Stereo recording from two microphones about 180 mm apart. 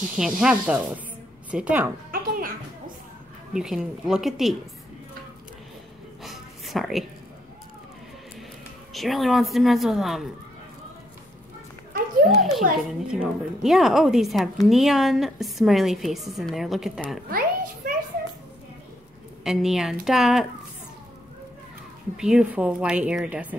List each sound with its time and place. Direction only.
0.2 s speech: 5° right (ahead or behind)
2.0 s music: 55° right (ahead or behind)
3.5 s a woman's voice: 5° right (ahead or behind)
6.2 s a sound: centre (ahead or behind)
8.9 s a woman's voice: centre (ahead or behind)
12.3 s a woman's voice: centre (ahead or behind)
17.3 s a sound: 55° right (ahead or behind)
19.4 s a woman's voice: centre (ahead or behind)
22.1 s a woman's voice: 5° right (ahead or behind)